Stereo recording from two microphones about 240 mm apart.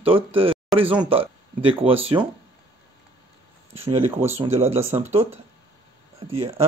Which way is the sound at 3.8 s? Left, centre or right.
Right.